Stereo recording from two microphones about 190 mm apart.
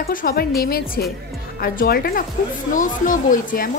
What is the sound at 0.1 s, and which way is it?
Speech, 50° left (ahead or behind).